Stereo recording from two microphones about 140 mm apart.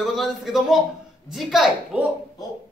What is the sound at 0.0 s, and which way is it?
A man's voice, centre (ahead or behind).